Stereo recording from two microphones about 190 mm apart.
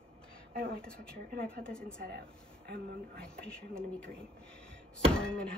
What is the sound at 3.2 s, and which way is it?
Speech, 5° left (ahead or behind).